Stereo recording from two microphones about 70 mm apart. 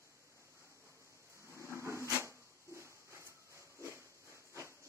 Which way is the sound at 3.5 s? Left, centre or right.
Left.